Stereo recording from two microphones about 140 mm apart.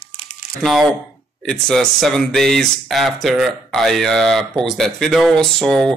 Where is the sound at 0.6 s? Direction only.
Centre (ahead or behind).